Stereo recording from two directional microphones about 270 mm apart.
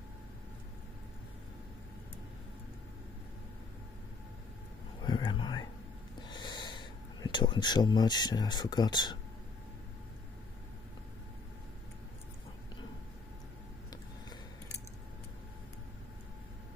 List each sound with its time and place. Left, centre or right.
5.0 s whispering: centre
6.2 s gasp: centre